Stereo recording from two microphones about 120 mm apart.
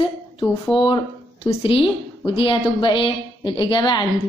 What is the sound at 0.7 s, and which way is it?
A woman's voice, 45° left (ahead or behind).